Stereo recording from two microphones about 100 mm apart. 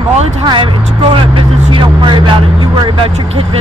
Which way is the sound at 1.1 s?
60° right (ahead or behind).